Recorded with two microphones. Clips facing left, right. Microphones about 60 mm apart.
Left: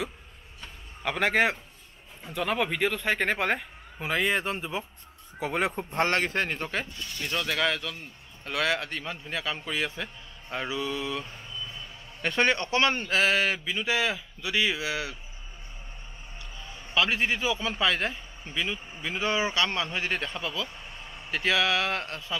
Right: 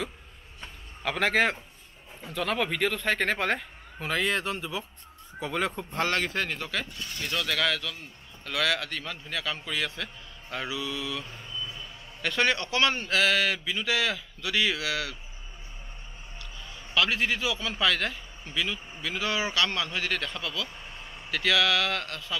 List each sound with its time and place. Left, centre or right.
1.0 s a man's voice: centre; by 6.9 s left
7.0 s speech: centre
7.3 s a man's voice: left
11.2 s vehicle: centre
12.2 s a man's voice: left
16.6 s a man's voice: left
20.7 s vehicle: centre
21.3 s a man's voice: left